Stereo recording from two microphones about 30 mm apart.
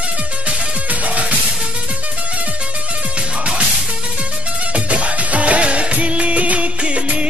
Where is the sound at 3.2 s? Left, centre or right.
Right.